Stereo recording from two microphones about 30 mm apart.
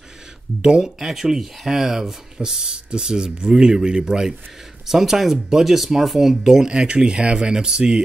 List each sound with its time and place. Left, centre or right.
0.6 s speech: right
0.8 s speech: centre
4.8 s speech: centre